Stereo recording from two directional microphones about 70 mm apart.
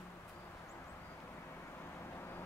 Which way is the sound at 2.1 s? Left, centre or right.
Left.